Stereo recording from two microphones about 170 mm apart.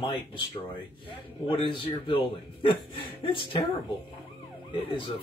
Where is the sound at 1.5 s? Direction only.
30° left (ahead or behind).